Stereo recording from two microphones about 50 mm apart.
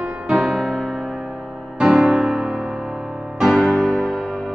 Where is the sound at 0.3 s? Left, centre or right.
Centre.